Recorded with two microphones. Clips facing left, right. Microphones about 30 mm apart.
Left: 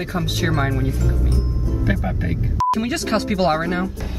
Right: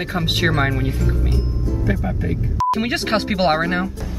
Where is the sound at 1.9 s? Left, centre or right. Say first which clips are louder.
Even; left.